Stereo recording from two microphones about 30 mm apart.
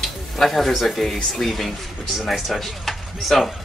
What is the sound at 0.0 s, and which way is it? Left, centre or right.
Speech, centre.